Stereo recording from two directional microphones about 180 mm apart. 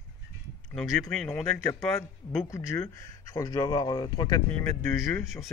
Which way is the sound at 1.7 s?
15° left (ahead or behind).